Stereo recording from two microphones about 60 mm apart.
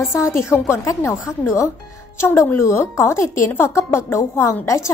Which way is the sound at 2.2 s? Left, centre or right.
Left.